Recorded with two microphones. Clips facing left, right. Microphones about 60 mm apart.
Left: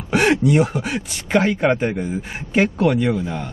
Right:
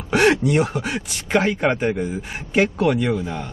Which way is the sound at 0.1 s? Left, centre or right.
Centre.